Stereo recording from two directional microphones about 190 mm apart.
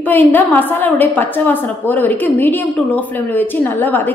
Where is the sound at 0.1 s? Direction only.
10° left (ahead or behind).